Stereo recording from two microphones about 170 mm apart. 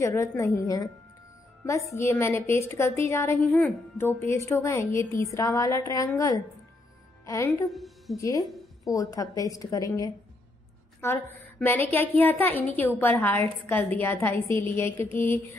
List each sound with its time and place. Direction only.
0.0 s a woman's voice: 15° left (ahead or behind)
2.0 s a woman's voice: 15° left (ahead or behind)
7.7 s a woman's voice: centre (ahead or behind)
8.2 s a woman's voice: 20° left (ahead or behind)